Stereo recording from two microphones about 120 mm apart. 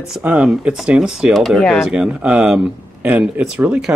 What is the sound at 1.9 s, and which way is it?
Speech, 10° right (ahead or behind).